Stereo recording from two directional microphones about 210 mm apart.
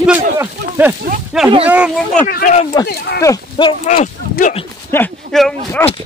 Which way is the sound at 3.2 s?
20° left (ahead or behind).